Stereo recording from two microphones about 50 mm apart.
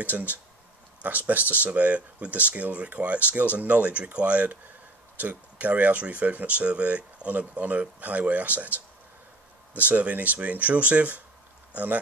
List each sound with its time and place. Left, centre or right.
0.0 s speech: right